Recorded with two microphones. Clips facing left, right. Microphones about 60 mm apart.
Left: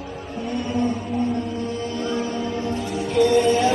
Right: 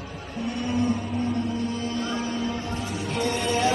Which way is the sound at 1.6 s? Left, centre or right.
Left.